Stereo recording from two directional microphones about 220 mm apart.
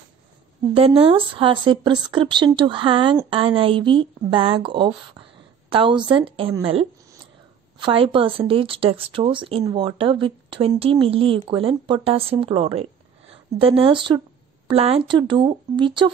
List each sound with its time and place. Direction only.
0.7 s speech: 25° right (ahead or behind)